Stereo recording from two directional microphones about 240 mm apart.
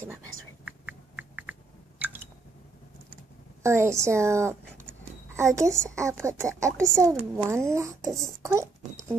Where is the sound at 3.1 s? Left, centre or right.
Centre.